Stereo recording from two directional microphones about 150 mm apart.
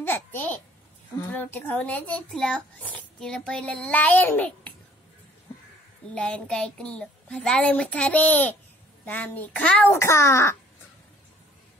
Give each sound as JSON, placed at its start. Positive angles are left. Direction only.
{"t": 0.0, "sound": "babbling", "side_deg": 15}
{"t": 1.2, "sound": "a child's voice", "side_deg": 10}
{"t": 6.1, "sound": "a child's voice", "side_deg": 5}
{"t": 9.9, "sound": "a child's voice", "side_deg": 20}